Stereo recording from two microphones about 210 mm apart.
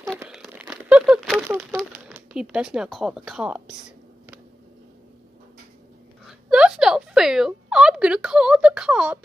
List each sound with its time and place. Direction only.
0.2 s crumpling: 5° right (ahead or behind)
6.2 s speech: centre (ahead or behind)